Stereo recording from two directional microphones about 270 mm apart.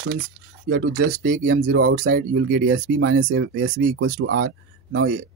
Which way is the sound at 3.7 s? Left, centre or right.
Right.